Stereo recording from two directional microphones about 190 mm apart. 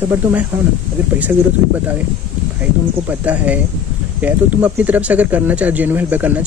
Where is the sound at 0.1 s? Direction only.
10° right (ahead or behind).